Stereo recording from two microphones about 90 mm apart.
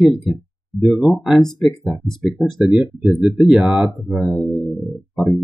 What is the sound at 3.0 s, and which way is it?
Speech, 5° right (ahead or behind).